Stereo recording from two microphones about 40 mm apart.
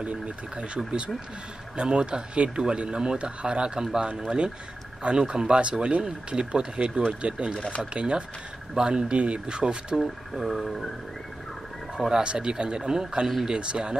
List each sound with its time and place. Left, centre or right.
0.0 s speech: right
10.3 s speech: centre
12.0 s speech: right